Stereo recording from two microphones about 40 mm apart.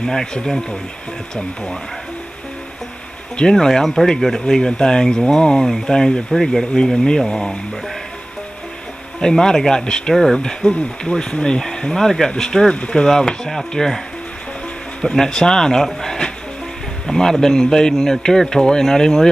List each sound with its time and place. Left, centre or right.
0.0 s speech: centre
3.3 s speech: centre
9.2 s speech: centre
10.1 s speech: centre
10.4 s speech: left